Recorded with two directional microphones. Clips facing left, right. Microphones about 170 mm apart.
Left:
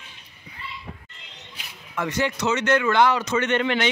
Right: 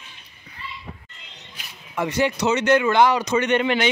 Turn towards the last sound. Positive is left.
turn(degrees=-15)  # may be behind; listen again after turning